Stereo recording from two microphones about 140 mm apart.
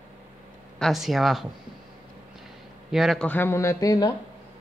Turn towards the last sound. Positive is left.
turn(degrees=25)  # may be behind; listen again after turning